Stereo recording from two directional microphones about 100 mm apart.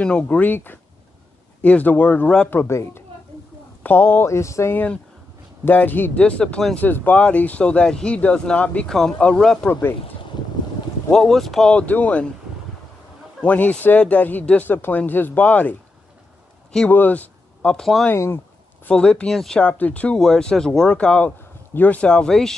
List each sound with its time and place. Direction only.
0.0 s speech: 10° left (ahead or behind)
2.5 s speech: 25° left (ahead or behind)
4.7 s speech: 10° left (ahead or behind)
9.7 s speech: 20° left (ahead or behind)
11.1 s speech: 5° left (ahead or behind)
13.4 s speech: 15° left (ahead or behind)
16.9 s speech: 15° left (ahead or behind)
18.1 s speech: 25° left (ahead or behind)
18.9 s speech: 10° left (ahead or behind)
19.6 s speech: 15° left (ahead or behind)